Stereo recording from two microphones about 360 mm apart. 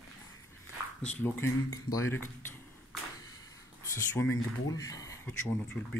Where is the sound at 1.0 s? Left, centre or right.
Centre.